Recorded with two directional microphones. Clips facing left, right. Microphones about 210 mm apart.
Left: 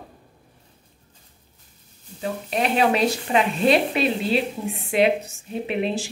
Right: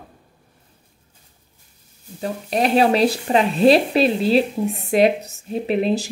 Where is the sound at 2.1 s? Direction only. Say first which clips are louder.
Right 3 dB; 35° right (ahead or behind).